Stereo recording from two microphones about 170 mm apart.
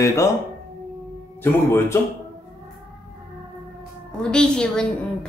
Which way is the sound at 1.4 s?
15° left (ahead or behind).